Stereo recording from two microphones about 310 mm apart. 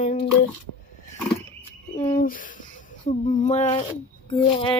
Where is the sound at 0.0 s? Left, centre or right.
Left.